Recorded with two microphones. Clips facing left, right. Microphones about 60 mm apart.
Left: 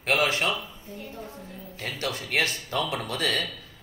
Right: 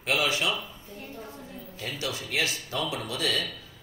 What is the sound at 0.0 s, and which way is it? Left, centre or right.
Speech, left.